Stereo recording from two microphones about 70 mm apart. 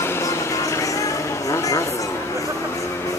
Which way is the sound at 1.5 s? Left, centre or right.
Left.